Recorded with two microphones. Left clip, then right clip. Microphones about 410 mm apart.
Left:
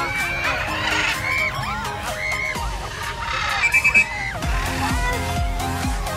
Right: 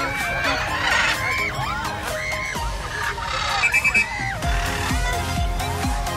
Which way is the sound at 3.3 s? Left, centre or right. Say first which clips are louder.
Left 2 dB; centre.